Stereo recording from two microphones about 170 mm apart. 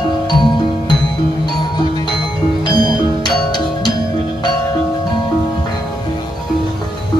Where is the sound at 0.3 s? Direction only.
25° left (ahead or behind).